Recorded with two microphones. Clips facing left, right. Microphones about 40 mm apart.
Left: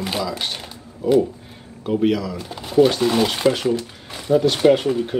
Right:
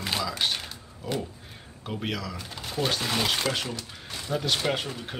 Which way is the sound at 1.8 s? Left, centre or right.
Centre.